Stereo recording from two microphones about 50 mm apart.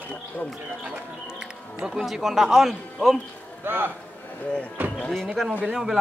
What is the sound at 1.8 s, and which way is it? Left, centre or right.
Speech, centre.